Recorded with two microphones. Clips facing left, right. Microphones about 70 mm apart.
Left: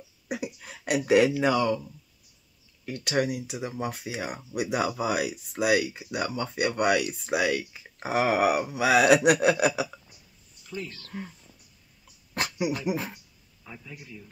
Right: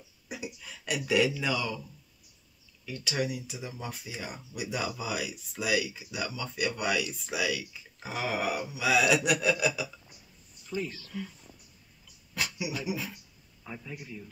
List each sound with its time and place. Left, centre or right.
0.3 s speech: left
2.8 s speech: left
10.7 s a man's voice: centre
12.4 s speech: left
13.7 s a man's voice: centre